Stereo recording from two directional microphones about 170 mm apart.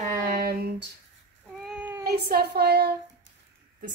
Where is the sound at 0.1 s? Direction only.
55° right (ahead or behind).